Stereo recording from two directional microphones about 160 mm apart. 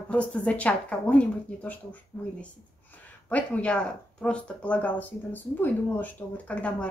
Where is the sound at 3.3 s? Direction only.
10° left (ahead or behind).